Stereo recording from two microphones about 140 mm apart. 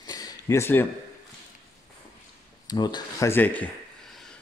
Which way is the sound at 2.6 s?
30° left (ahead or behind).